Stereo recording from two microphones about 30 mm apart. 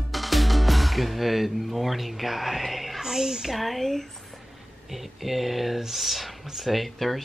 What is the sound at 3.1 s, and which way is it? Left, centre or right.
Speech, centre.